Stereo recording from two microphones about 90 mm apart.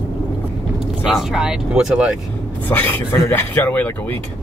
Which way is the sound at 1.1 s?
5° right (ahead or behind).